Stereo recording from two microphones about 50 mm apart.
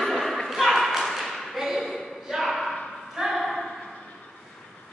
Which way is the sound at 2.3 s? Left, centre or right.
Centre.